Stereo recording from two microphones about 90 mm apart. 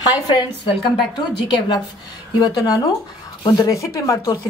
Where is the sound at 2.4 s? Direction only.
50° left (ahead or behind).